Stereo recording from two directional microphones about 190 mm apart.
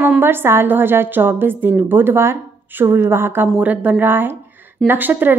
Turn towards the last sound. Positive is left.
turn(degrees=-10)  # may be behind; listen again after turning